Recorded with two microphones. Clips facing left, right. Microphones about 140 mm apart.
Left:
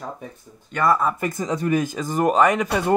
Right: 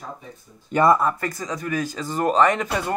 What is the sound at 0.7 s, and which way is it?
Speech, 25° right (ahead or behind).